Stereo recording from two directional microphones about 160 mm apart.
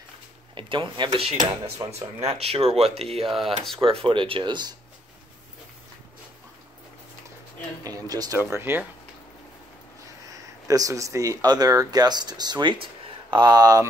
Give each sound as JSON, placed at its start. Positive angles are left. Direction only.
{"t": 0.6, "sound": "speech", "side_deg": -30}
{"t": 7.8, "sound": "speech", "side_deg": -25}
{"t": 10.2, "sound": "speech", "side_deg": -20}